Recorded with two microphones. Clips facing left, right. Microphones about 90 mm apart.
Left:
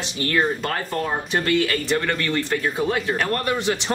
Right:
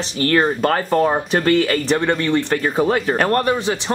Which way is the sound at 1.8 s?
25° right (ahead or behind).